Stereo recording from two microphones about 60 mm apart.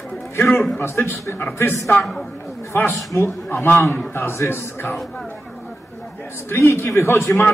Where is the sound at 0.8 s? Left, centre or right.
Left.